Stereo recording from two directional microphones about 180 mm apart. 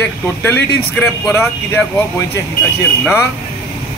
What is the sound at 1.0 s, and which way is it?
Speech, 15° left (ahead or behind).